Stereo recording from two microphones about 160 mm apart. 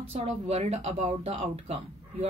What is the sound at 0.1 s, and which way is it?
Speech, 40° right (ahead or behind).